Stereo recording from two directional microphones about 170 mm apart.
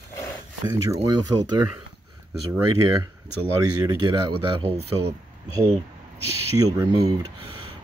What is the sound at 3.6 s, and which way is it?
Speech, 20° right (ahead or behind).